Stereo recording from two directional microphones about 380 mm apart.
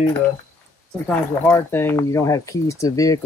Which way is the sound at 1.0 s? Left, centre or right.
Centre.